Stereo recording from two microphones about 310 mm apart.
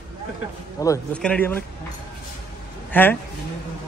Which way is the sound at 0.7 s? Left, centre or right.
Centre.